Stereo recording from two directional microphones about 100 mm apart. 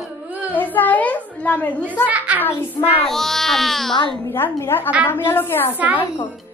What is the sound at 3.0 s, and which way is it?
Speech, 5° left (ahead or behind).